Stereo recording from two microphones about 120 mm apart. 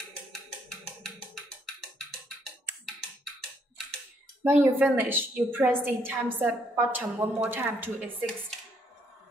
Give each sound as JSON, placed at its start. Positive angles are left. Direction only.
{"t": 4.5, "sound": "a woman's voice", "side_deg": -15}